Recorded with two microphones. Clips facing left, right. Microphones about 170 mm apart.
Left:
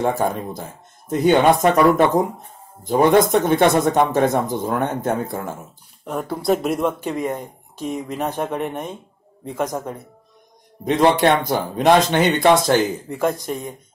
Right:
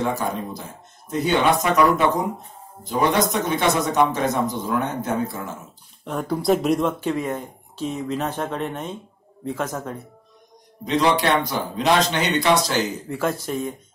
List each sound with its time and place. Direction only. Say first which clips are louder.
0.0 s speech: left 4 dB; 50° left (ahead or behind)
6.0 s speech: even; 5° left (ahead or behind)
7.1 s speech: even; 15° left (ahead or behind)
10.9 s speech: left 4 dB; 50° left (ahead or behind)
13.2 s speech: left 2 dB; 15° left (ahead or behind)